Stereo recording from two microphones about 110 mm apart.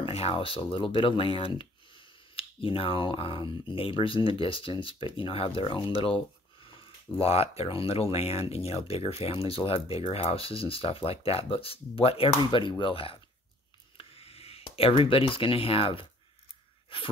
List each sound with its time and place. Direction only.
0.0 s speech: 60° left (ahead or behind)